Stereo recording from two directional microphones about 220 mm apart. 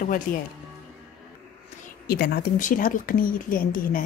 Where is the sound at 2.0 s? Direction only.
45° left (ahead or behind).